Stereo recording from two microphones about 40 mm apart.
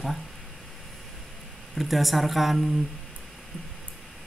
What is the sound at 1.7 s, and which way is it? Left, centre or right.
Speech, centre.